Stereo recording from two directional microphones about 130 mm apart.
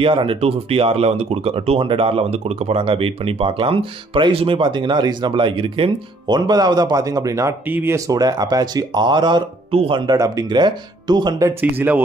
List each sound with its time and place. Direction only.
0.0 s speech: 40° right (ahead or behind)
10.1 s speech: 25° right (ahead or behind)
11.6 s speech: 15° right (ahead or behind)